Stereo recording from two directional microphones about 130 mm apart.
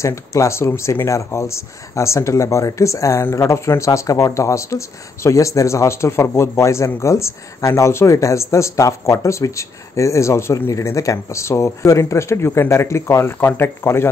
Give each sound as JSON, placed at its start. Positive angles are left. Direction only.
{"t": 0.0, "sound": "speech", "side_deg": 25}